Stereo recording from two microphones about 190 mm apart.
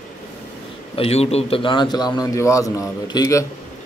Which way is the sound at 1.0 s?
35° left (ahead or behind).